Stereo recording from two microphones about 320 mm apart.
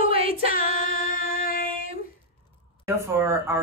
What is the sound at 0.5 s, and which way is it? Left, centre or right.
Female singing, left.